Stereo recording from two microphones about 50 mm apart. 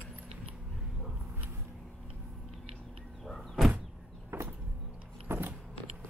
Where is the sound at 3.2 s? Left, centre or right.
Centre.